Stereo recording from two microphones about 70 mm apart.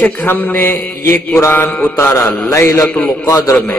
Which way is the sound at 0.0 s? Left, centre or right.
Left.